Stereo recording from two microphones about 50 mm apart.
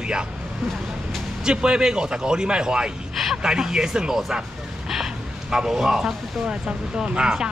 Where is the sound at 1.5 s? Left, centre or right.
Centre.